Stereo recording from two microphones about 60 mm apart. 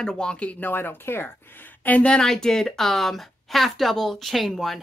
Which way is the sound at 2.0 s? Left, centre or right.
Centre.